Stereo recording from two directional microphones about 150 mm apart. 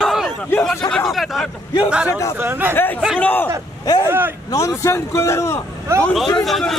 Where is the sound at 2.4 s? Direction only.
15° right (ahead or behind).